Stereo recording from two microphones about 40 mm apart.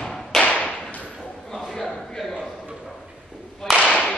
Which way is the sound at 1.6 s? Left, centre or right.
Centre.